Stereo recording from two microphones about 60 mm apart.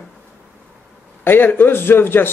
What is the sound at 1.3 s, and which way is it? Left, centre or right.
A man's voice, left.